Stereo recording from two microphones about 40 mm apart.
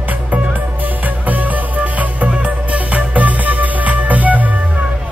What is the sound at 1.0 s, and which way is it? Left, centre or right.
Music, right.